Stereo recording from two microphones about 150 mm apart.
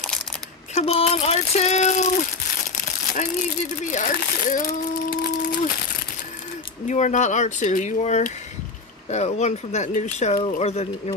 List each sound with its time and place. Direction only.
0.7 s speech: 45° left (ahead or behind)
2.7 s crumpling: 55° left (ahead or behind)
3.9 s speech: 60° left (ahead or behind)
6.9 s speech: 55° left (ahead or behind)